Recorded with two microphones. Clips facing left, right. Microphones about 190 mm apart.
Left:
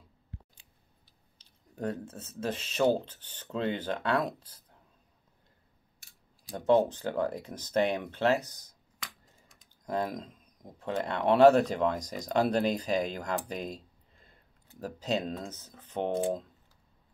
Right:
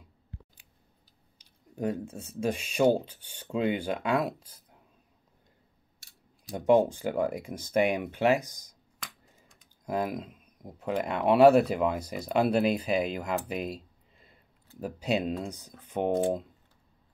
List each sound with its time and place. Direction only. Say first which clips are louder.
1.4 s speech: right 3 dB; 10° right (ahead or behind)
6.5 s speech: right 2 dB; 15° right (ahead or behind)
13.5 s a sound: right 3 dB; 5° right (ahead or behind)
14.8 s speech: right 3 dB; 10° right (ahead or behind)